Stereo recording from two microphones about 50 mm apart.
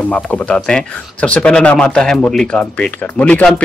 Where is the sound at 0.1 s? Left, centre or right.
Left.